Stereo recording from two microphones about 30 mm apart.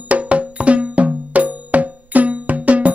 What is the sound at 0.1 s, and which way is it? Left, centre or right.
Music, right.